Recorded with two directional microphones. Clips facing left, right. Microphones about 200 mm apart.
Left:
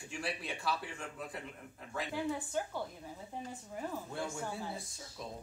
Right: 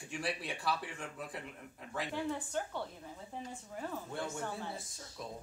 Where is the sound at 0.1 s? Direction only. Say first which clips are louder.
Right 1 dB; centre (ahead or behind).